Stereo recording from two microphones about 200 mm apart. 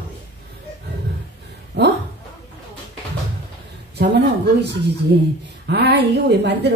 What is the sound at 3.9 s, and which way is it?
A woman's voice, 60° right (ahead or behind).